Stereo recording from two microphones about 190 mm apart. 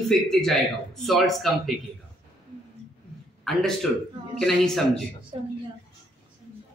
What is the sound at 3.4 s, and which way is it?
A man's voice, centre (ahead or behind).